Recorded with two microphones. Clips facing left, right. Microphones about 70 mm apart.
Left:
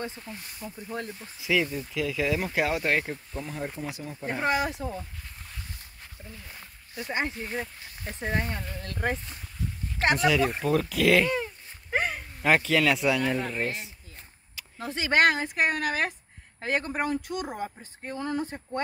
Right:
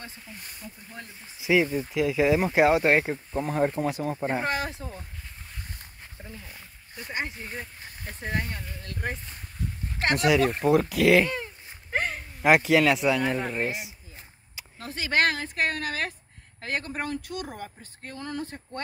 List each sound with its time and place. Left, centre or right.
0.0 s speech: left
0.6 s speech: left
1.4 s speech: right
3.4 s speech: right
4.5 s speech: centre
7.0 s speech: left
10.6 s speech: centre
11.2 s a sound: centre
12.2 s speech: centre
12.9 s speech: centre
14.8 s speech: left; by 17.6 s centre
17.6 s speech: left